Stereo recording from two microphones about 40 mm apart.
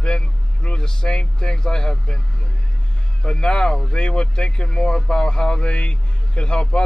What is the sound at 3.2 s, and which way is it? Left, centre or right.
Speech, centre.